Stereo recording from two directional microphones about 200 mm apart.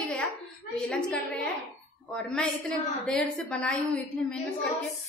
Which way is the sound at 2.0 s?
5° left (ahead or behind).